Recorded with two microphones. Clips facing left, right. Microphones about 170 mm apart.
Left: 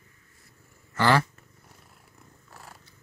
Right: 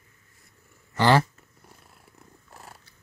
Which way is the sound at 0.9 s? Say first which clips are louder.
Right 2 dB; 25° right (ahead or behind).